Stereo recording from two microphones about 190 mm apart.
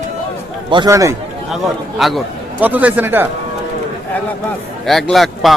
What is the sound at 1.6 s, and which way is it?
A man's voice, centre (ahead or behind).